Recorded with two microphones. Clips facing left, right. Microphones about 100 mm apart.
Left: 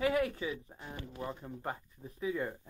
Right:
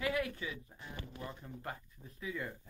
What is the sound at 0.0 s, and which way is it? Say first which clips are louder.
Speech: left 5 dB; 30° left (ahead or behind).